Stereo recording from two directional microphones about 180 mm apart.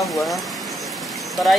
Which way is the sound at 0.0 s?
Centre (ahead or behind).